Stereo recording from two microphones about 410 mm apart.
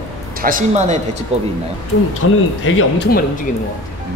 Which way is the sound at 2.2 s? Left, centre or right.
Left.